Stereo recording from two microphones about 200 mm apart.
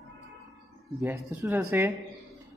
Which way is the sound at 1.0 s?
10° right (ahead or behind).